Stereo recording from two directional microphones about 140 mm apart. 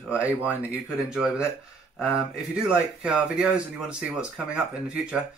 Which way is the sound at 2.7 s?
10° right (ahead or behind).